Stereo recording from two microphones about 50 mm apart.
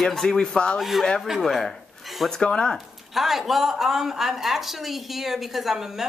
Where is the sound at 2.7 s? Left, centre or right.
Centre.